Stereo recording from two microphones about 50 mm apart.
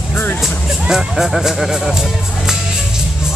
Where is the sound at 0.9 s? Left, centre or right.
Centre.